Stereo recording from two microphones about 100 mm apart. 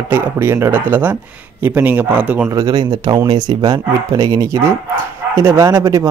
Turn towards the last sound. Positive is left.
turn(degrees=-35)  # may be behind; listen again after turning